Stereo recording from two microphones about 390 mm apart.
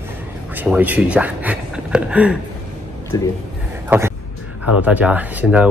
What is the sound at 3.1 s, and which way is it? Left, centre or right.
Speech, centre.